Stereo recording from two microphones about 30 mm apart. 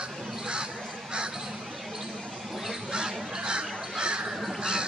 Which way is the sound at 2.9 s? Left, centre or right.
Right.